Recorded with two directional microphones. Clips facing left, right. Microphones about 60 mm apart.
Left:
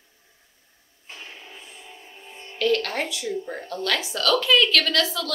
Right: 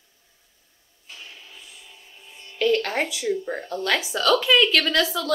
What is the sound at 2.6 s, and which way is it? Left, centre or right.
A woman's voice, centre.